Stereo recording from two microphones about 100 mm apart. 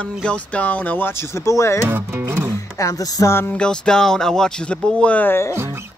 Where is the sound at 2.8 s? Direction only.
35° left (ahead or behind).